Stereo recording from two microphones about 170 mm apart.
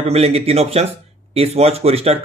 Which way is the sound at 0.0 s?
35° right (ahead or behind).